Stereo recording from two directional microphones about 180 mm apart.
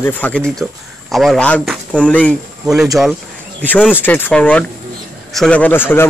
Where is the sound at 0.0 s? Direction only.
10° left (ahead or behind).